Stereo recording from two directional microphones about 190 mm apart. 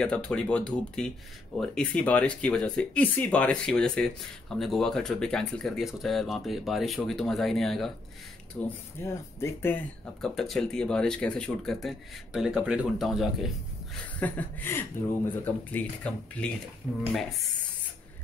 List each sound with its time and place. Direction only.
0.0 s speech: 5° left (ahead or behind)
10.2 s speech: centre (ahead or behind)
14.2 s speech: 10° left (ahead or behind)